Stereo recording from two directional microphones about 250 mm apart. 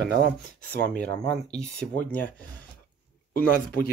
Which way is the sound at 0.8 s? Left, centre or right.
Centre.